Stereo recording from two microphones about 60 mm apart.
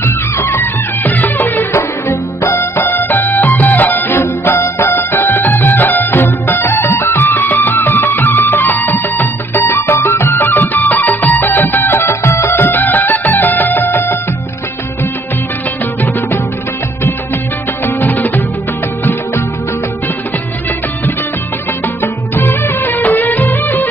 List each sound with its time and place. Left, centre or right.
0.0 s music: left
1.7 s music: left
16.0 s music: left
17.8 s music: left
21.8 s music: left